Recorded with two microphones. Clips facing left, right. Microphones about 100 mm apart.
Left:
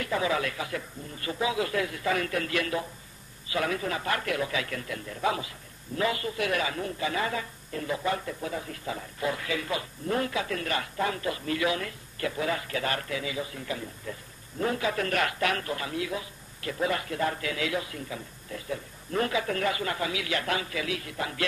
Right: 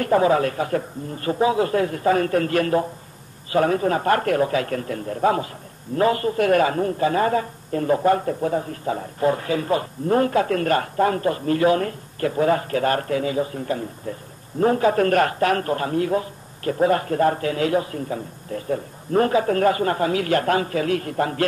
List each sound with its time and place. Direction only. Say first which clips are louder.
0.0 s a woman's voice: right 10 dB; 45° right (ahead or behind)